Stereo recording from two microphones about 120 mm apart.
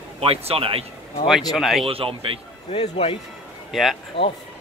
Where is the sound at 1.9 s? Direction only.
50° right (ahead or behind).